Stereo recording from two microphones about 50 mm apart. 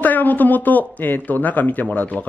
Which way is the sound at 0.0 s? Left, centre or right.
Left.